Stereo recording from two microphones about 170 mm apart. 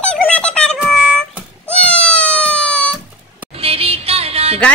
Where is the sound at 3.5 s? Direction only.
35° right (ahead or behind).